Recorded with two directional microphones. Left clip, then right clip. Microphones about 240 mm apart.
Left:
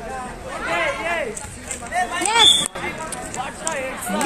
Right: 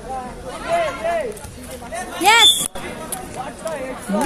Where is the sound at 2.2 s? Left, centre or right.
Right.